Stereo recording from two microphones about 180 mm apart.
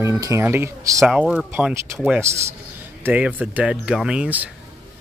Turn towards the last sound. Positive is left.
turn(degrees=-5)  # may be behind; listen again after turning